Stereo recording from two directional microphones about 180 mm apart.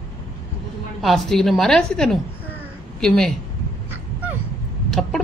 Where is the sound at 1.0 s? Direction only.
Centre (ahead or behind).